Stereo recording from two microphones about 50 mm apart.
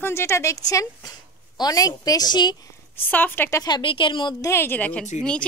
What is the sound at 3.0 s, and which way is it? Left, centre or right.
Speech, left.